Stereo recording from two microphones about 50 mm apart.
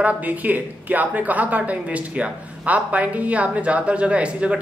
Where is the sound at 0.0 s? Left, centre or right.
Right.